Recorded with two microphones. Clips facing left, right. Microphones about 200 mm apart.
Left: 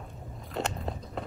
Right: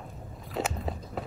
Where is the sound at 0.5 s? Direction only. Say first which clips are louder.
Right 1 dB; 5° right (ahead or behind).